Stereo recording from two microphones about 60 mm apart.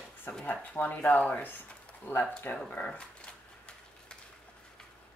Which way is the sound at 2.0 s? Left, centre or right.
Left.